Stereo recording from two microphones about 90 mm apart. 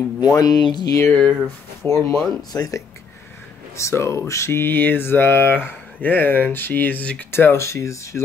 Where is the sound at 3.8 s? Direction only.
35° left (ahead or behind); by 7.2 s 15° left (ahead or behind).